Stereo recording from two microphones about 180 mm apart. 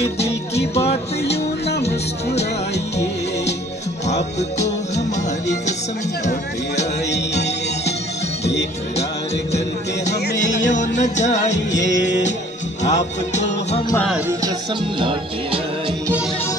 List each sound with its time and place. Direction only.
0.0 s music: 35° left (ahead or behind)
1.8 s a sound: 35° left (ahead or behind)
4.4 s music: 40° left (ahead or behind)
7.1 s music: 70° left (ahead or behind)
10.4 s music: 45° left (ahead or behind)
11.9 s music: 80° left
12.8 s music: 40° left (ahead or behind)
15.0 s speech: 30° right (ahead or behind)